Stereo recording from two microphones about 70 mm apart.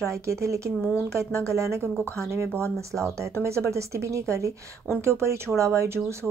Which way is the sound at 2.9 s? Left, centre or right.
Right.